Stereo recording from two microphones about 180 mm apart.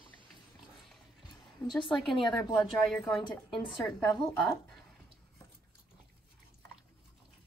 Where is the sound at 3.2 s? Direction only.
25° left (ahead or behind).